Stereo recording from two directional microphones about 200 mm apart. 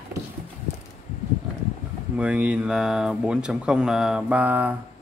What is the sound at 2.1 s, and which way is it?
Speech, 5° right (ahead or behind).